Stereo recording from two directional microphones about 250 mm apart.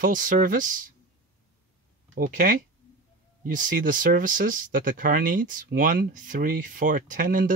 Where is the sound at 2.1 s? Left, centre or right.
Right.